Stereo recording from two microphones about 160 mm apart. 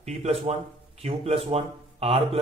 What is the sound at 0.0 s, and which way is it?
A man's voice, 45° right (ahead or behind).